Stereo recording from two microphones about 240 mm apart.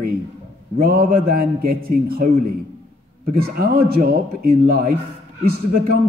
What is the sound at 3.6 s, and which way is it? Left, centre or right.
Speech, right.